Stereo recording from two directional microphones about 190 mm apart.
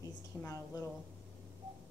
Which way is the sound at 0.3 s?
15° left (ahead or behind).